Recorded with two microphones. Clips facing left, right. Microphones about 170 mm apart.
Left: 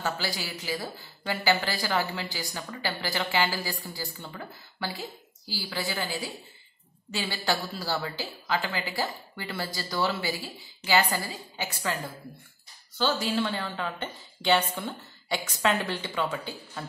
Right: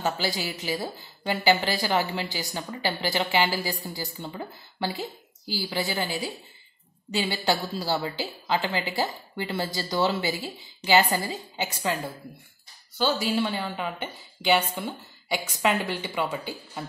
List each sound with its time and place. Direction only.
0.0 s a woman's voice: 20° right (ahead or behind)